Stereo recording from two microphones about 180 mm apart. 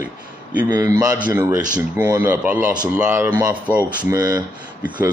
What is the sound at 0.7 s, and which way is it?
Speech, 20° right (ahead or behind).